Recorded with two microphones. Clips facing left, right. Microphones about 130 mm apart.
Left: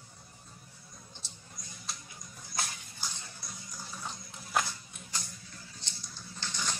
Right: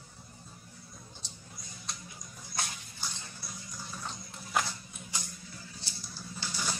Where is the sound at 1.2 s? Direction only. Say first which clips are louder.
Right 2 dB; centre (ahead or behind).